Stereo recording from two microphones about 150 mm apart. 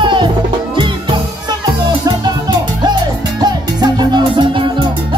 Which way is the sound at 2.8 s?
30° right (ahead or behind).